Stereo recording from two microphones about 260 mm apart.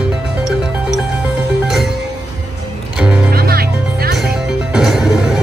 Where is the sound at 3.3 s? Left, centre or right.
Right.